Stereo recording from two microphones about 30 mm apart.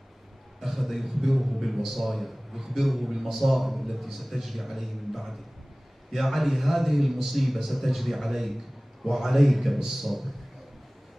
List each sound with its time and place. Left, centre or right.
0.6 s a man's voice: centre